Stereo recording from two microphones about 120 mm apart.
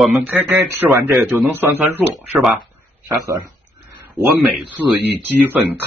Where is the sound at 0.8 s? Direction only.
20° right (ahead or behind).